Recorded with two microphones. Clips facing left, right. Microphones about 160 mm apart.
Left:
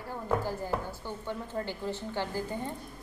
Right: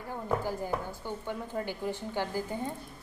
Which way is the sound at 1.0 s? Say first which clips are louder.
Right 1 dB; 15° right (ahead or behind).